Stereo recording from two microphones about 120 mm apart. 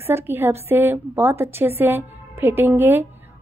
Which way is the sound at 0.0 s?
20° right (ahead or behind).